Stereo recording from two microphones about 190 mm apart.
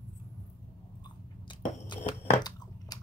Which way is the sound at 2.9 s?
20° left (ahead or behind).